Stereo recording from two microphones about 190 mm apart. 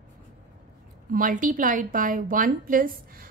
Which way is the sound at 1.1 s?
45° right (ahead or behind).